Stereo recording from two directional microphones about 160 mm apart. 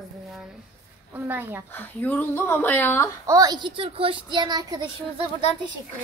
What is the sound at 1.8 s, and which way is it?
Speech, 10° left (ahead or behind).